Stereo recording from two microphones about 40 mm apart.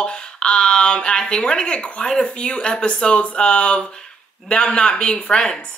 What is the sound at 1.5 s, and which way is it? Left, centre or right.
A woman's voice, left.